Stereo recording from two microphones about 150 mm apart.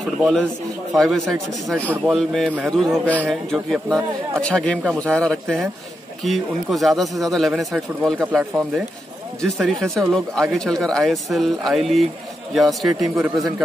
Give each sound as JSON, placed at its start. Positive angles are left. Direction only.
{"t": 0.2, "sound": "speech", "side_deg": 5}